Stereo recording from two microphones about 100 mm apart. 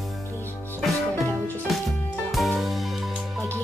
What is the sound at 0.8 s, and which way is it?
Music, centre (ahead or behind).